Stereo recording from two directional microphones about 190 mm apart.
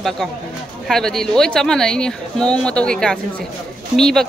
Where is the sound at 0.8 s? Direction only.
Centre (ahead or behind).